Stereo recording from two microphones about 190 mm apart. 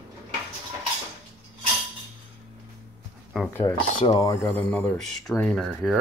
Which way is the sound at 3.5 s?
10° left (ahead or behind).